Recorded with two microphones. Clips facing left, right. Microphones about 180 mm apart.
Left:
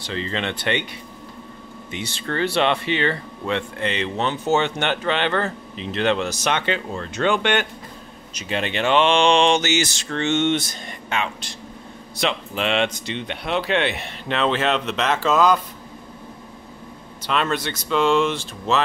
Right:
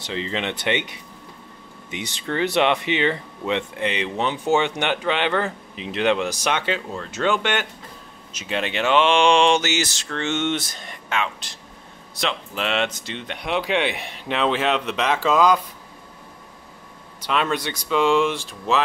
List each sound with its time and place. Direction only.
0.0 s speech: 15° right (ahead or behind)
1.9 s speech: 15° right (ahead or behind); by 13.4 s centre (ahead or behind)
13.4 s speech: 10° right (ahead or behind)
17.2 s speech: 10° right (ahead or behind)